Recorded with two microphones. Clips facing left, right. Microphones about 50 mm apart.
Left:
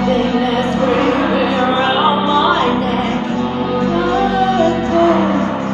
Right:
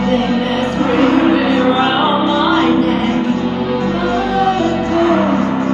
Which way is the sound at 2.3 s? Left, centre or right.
Left.